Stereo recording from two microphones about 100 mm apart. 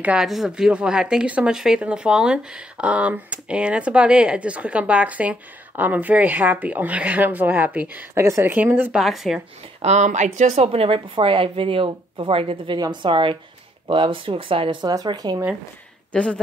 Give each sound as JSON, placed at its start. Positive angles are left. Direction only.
{"t": 0.0, "sound": "speech", "side_deg": -5}
{"t": 8.1, "sound": "speech", "side_deg": -30}
{"t": 8.5, "sound": "speech", "side_deg": -20}
{"t": 8.9, "sound": "speech", "side_deg": -5}
{"t": 9.8, "sound": "speech", "side_deg": -90}
{"t": 10.6, "sound": "speech", "side_deg": -80}
{"t": 12.7, "sound": "speech", "side_deg": -45}
{"t": 16.1, "sound": "speech", "side_deg": 10}